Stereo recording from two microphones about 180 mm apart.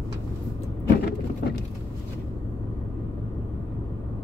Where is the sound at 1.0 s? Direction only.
60° left (ahead or behind).